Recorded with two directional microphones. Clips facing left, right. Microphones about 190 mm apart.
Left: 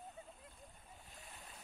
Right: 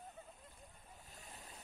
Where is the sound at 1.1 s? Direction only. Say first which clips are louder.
Right 1 dB; 40° right (ahead or behind).